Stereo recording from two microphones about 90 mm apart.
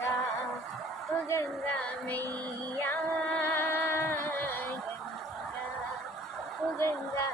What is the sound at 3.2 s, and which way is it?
Music, 15° left (ahead or behind).